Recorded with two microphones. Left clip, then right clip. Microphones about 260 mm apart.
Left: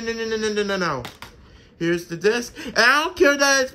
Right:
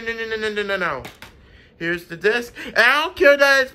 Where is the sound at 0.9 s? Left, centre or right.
Centre.